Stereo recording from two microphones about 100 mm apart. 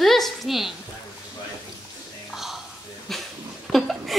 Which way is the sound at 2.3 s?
5° right (ahead or behind).